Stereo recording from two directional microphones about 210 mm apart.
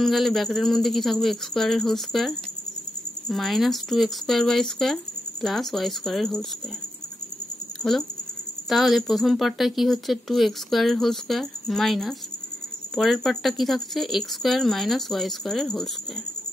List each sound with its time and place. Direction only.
0.0 s speech: centre (ahead or behind)
7.8 s speech: 5° left (ahead or behind)